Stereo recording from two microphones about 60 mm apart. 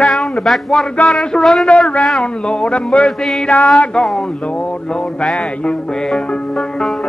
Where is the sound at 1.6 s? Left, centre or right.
Centre.